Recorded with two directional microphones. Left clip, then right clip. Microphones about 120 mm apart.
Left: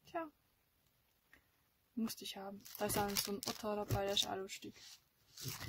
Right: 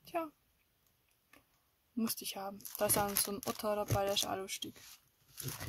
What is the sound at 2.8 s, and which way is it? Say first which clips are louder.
Speech: right 5 dB; 25° right (ahead or behind).